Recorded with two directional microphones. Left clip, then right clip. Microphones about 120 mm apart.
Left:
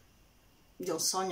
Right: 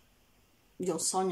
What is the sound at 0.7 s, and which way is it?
Speech, 30° right (ahead or behind).